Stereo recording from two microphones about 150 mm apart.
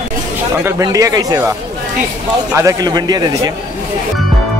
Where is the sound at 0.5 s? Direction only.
20° right (ahead or behind).